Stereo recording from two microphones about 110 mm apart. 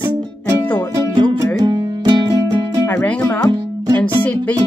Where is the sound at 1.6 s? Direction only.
35° right (ahead or behind).